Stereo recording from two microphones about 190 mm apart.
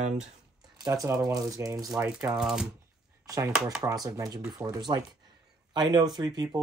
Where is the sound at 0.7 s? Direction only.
20° right (ahead or behind).